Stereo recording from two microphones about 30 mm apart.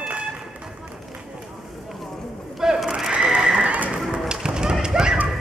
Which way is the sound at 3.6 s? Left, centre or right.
Right.